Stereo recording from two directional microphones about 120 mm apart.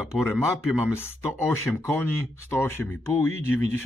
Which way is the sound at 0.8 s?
20° left (ahead or behind).